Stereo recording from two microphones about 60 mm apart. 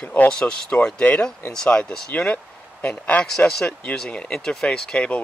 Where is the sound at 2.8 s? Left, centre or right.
Left.